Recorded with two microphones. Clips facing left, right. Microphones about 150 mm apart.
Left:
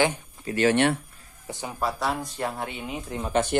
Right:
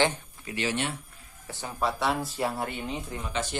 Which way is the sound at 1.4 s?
15° left (ahead or behind).